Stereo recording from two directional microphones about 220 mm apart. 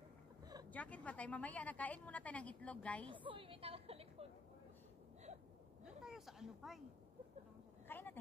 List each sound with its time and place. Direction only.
0.7 s a woman's voice: 5° left (ahead or behind)
3.1 s a woman's voice: 25° right (ahead or behind)
5.9 s a sound: centre (ahead or behind)
7.9 s speech: 10° left (ahead or behind)